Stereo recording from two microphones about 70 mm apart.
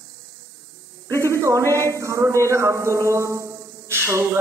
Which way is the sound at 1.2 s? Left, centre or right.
Right.